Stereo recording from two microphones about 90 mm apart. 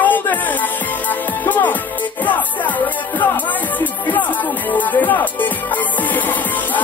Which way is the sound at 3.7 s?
20° left (ahead or behind).